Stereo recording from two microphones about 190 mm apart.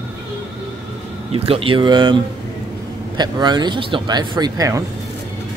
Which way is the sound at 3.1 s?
20° right (ahead or behind).